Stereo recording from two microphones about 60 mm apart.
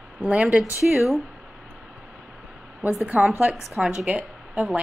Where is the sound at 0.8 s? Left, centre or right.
Centre.